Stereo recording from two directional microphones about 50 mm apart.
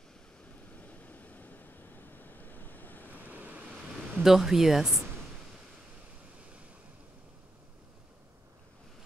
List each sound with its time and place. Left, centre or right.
0.7 s waves: left
3.1 s a sound: right
4.2 s speech: centre